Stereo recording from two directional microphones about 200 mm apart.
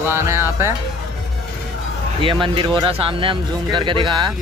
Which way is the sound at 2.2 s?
25° right (ahead or behind).